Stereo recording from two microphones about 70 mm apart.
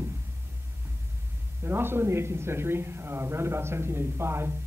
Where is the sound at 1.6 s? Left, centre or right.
Right.